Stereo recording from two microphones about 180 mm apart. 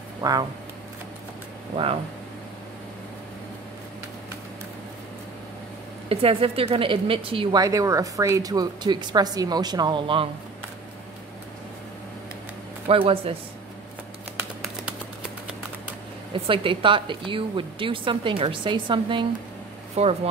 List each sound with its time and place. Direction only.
0.2 s speech: 20° right (ahead or behind)
6.0 s a woman's voice: 30° right (ahead or behind)
7.6 s a woman's voice: 20° right (ahead or behind)
12.8 s a woman's voice: 30° right (ahead or behind)
16.4 s a woman's voice: 30° right (ahead or behind)